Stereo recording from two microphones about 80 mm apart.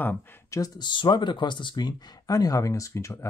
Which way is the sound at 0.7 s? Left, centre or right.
Left.